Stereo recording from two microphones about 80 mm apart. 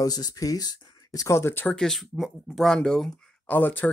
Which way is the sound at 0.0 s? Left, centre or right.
Left.